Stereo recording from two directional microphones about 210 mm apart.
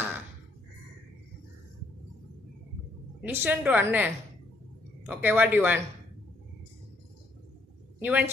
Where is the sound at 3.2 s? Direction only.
5° right (ahead or behind).